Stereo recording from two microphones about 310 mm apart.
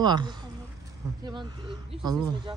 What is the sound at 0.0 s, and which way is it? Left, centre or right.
Speech, centre.